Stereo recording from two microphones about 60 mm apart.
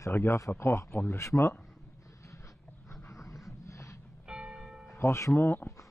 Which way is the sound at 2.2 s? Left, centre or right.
Left.